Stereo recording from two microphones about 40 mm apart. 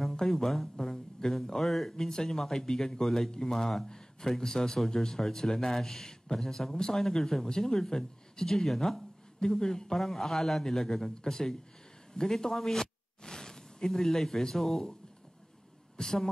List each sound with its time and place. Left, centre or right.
0.3 s speech: centre
12.1 s a sound: centre
14.5 s speech: centre
16.0 s speech: centre